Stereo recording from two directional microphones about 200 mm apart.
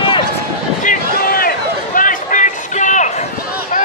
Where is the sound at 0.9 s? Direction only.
45° left (ahead or behind).